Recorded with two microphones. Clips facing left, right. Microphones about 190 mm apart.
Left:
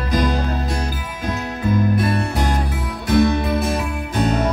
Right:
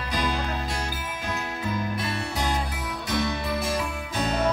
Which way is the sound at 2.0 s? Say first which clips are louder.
Left 9 dB; 55° left (ahead or behind).